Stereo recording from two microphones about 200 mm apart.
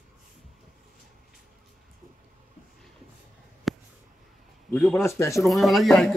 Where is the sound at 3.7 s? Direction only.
Centre (ahead or behind).